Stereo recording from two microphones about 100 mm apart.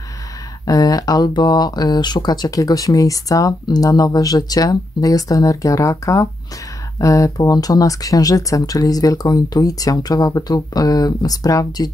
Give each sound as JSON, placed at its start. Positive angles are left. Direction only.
{"t": 0.7, "sound": "speech", "side_deg": 40}